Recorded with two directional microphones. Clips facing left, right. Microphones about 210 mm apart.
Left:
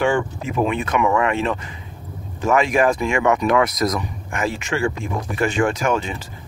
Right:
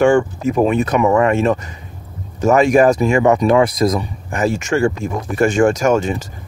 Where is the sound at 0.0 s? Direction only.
45° right (ahead or behind).